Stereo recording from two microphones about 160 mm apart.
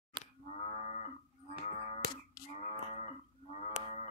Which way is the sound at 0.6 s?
40° left (ahead or behind).